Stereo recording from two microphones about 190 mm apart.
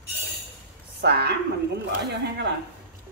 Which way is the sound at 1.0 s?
60° right (ahead or behind).